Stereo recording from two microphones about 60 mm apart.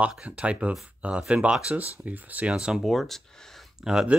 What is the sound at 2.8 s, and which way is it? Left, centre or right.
Speech, centre.